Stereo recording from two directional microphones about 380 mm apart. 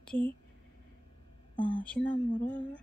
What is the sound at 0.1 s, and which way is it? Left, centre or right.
Speech, centre.